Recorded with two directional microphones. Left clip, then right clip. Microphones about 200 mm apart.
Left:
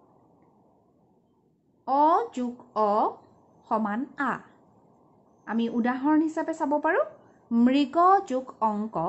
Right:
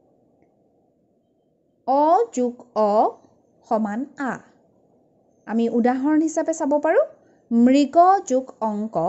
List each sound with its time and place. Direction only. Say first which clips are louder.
1.9 s a woman's voice: right 5 dB; 35° right (ahead or behind)
5.4 s a woman's voice: right 8 dB; 35° right (ahead or behind)